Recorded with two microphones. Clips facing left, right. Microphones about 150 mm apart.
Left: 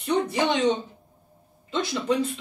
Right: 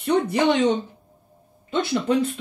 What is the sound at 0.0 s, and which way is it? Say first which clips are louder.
Speech: right 4 dB; 65° right (ahead or behind).